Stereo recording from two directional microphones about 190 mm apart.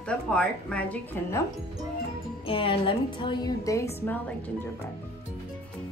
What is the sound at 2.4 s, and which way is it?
A woman's voice, 30° left (ahead or behind).